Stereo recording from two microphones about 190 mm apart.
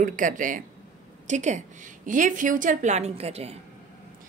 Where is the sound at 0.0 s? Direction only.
45° right (ahead or behind).